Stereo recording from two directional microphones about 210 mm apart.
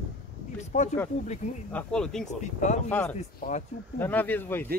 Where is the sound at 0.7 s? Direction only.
35° left (ahead or behind).